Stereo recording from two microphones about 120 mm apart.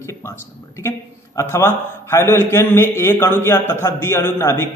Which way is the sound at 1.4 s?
20° left (ahead or behind).